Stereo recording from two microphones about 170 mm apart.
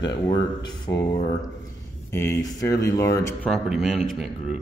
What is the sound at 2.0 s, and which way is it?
A man's voice, 15° left (ahead or behind).